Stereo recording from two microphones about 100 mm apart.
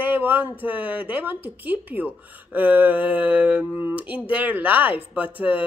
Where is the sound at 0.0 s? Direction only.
20° right (ahead or behind).